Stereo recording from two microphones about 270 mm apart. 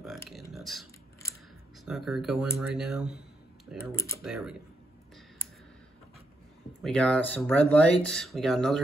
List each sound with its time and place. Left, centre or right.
0.0 s a sound: centre
0.5 s typing: centre
1.9 s speech: centre
3.9 s speech: centre
4.2 s speech: centre
6.8 s speech: centre